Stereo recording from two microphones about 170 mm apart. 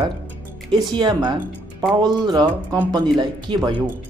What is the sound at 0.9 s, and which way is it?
Speech, 25° right (ahead or behind).